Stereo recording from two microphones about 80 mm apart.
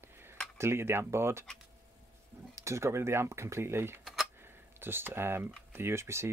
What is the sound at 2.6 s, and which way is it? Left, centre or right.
Speech, right.